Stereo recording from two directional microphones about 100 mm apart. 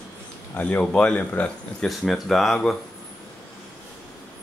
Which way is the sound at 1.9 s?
5° left (ahead or behind).